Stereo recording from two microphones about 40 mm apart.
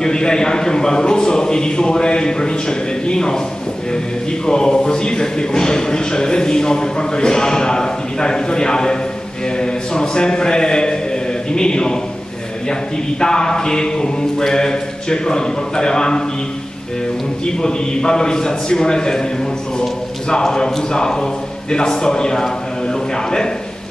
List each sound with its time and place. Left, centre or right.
0.0 s a man's voice: centre
4.5 s a man's voice: centre
13.2 s speech: centre
17.6 s a man's voice: centre
20.2 s a man's voice: centre